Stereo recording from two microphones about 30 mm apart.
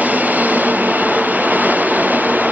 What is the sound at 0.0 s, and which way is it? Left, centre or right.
Train, right.